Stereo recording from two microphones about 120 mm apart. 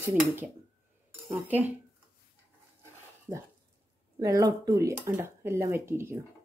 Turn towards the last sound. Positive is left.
turn(degrees=-20)  # may be behind; listen again after turning